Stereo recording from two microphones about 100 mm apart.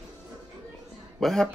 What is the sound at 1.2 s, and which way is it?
Speech, 5° left (ahead or behind).